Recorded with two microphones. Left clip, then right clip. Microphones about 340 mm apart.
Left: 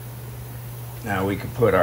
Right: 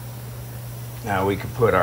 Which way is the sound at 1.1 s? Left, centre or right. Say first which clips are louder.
Right 3 dB; centre.